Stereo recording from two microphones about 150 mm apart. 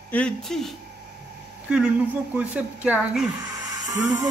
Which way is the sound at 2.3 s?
10° right (ahead or behind).